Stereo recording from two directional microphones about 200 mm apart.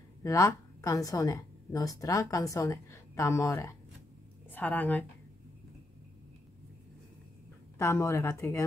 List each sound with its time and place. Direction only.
0.2 s a woman's voice: 15° left (ahead or behind)
7.8 s a woman's voice: 15° left (ahead or behind)